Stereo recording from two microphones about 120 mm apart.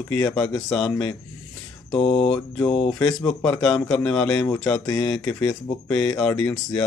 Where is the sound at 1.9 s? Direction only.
55° left (ahead or behind).